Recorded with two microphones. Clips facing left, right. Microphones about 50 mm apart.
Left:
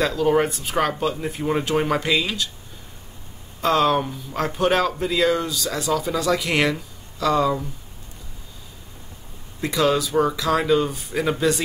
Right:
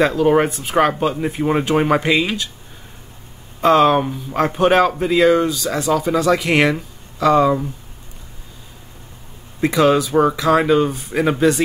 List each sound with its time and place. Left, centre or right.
0.0 s speech: right
3.6 s speech: right
9.6 s speech: right
10.9 s speech: centre
11.1 s speech: right